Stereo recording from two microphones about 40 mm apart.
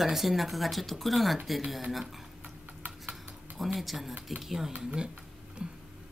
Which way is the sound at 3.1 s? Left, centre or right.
Centre.